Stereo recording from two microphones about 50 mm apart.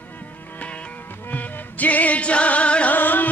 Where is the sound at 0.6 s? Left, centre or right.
Left.